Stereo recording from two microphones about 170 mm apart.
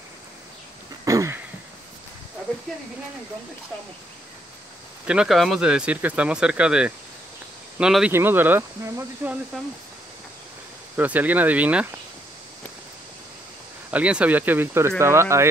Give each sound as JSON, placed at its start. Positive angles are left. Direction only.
{"t": 1.0, "sound": "a sound", "side_deg": -20}
{"t": 5.0, "sound": "speech", "side_deg": -5}
{"t": 11.0, "sound": "speech", "side_deg": -10}
{"t": 13.8, "sound": "speech", "side_deg": -10}